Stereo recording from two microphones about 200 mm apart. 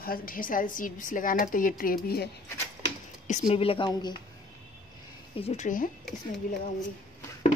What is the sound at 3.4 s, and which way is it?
Speech, 30° left (ahead or behind).